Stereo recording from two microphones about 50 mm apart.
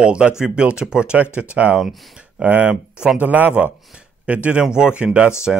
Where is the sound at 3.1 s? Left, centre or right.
Right.